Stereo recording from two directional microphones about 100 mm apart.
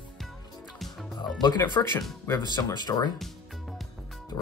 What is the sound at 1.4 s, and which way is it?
Speech, 45° left (ahead or behind).